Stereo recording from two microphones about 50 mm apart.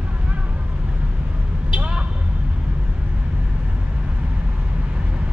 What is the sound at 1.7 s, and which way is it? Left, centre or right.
Vehicle, right.